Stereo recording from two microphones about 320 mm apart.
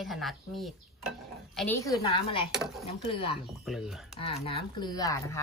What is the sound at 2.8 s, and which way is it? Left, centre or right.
Speech, centre.